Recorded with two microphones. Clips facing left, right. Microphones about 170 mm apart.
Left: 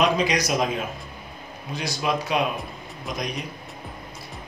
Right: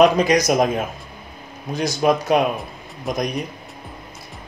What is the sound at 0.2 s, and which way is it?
Speech, 45° right (ahead or behind).